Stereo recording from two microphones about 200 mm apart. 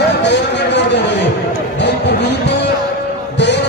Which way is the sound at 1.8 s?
55° left (ahead or behind).